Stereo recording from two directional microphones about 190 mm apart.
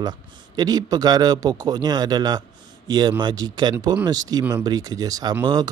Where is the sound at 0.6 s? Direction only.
20° right (ahead or behind).